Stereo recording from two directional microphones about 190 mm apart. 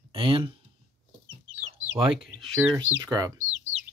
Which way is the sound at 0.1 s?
30° right (ahead or behind).